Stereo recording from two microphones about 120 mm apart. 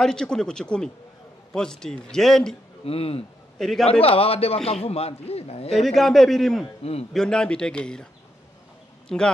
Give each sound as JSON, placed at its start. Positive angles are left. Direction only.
{"t": 0.0, "sound": "speech", "side_deg": 5}
{"t": 2.8, "sound": "a man's voice", "side_deg": 55}
{"t": 3.5, "sound": "a man's voice", "side_deg": 5}
{"t": 3.8, "sound": "a man's voice", "side_deg": 55}
{"t": 5.8, "sound": "speech", "side_deg": 0}
{"t": 6.8, "sound": "a man's voice", "side_deg": 55}
{"t": 7.2, "sound": "a man's voice", "side_deg": 5}
{"t": 9.1, "sound": "speech", "side_deg": 5}